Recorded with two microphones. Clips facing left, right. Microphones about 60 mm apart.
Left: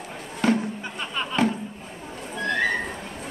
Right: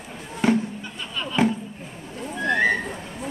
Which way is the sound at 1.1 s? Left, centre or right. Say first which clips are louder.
Even; left.